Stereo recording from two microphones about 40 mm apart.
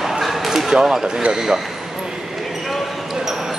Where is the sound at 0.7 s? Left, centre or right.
Centre.